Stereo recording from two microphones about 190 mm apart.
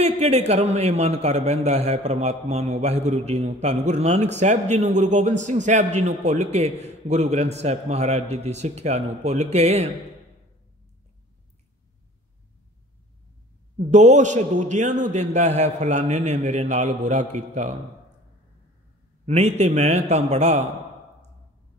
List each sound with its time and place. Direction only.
0.0 s a man's voice: 35° right (ahead or behind)
13.7 s a man's voice: 40° right (ahead or behind)
19.6 s a man's voice: 35° right (ahead or behind)